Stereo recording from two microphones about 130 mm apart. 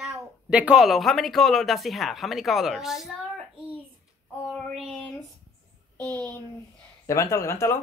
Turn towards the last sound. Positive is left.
turn(degrees=20)  # may be behind; listen again after turning